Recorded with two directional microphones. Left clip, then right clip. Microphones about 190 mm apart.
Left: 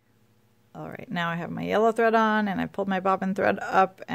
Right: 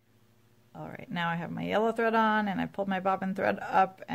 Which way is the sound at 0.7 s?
45° left (ahead or behind).